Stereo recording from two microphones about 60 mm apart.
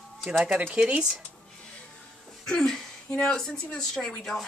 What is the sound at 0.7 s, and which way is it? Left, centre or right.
Speech, centre.